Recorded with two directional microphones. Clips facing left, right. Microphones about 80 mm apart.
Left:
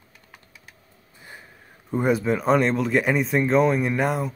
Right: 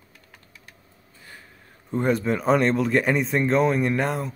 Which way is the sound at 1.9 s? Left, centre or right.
Centre.